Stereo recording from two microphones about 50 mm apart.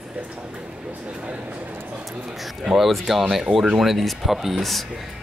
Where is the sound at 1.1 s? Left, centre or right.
Right.